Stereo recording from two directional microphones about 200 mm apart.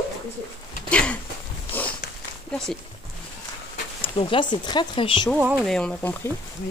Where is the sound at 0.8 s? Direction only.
5° left (ahead or behind).